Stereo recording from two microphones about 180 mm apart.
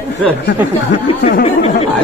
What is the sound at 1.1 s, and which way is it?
Speech, 30° left (ahead or behind).